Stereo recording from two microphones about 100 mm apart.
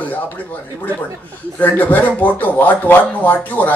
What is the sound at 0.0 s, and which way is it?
A man's voice, 15° left (ahead or behind).